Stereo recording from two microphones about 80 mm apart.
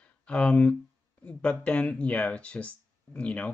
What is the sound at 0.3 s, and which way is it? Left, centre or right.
Speech, centre.